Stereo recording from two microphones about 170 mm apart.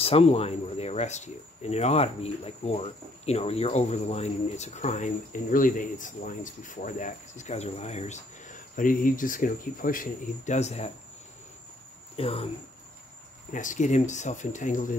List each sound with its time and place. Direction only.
0.0 s speech: 35° left (ahead or behind)
12.2 s speech: 35° left (ahead or behind)
13.5 s speech: 50° left (ahead or behind)